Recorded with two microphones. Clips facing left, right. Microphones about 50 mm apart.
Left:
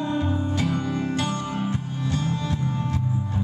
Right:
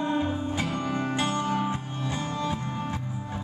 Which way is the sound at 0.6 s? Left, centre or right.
Centre.